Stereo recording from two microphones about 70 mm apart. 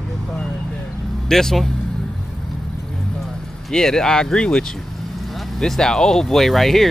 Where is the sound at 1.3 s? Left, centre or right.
Centre.